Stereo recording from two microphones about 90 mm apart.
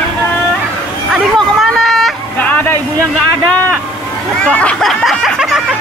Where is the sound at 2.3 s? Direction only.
20° left (ahead or behind).